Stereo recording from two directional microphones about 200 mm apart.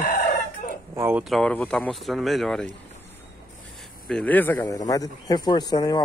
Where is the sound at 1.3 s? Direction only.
5° left (ahead or behind).